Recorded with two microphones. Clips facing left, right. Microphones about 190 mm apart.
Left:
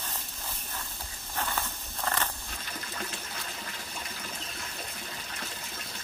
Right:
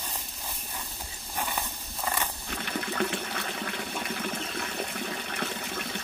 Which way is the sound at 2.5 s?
65° right (ahead or behind).